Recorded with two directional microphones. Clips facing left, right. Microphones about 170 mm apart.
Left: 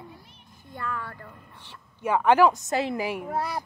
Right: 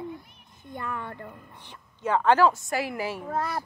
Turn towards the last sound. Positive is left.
turn(degrees=15)  # may be behind; listen again after turning